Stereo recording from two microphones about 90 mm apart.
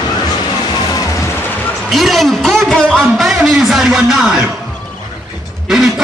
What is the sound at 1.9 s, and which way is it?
A man's voice, centre (ahead or behind).